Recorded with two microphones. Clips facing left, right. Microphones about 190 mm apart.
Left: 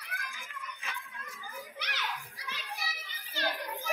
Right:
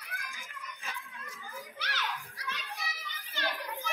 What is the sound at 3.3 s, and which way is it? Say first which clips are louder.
Children playing: left 2 dB; 35° left (ahead or behind).